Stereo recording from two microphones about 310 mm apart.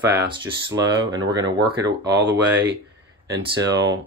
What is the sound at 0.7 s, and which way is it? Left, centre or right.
Speech, centre.